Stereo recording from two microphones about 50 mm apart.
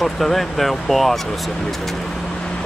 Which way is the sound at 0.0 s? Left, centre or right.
Centre.